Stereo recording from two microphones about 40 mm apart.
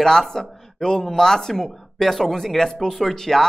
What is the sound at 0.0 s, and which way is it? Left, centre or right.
Speech, centre.